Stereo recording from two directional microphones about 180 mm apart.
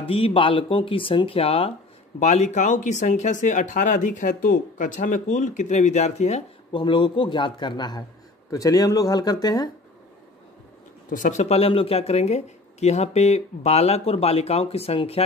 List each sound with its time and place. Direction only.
0.0 s speech: 30° left (ahead or behind)
11.1 s speech: 45° left (ahead or behind)